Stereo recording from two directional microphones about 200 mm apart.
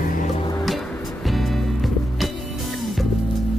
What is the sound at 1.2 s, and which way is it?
Music, centre (ahead or behind).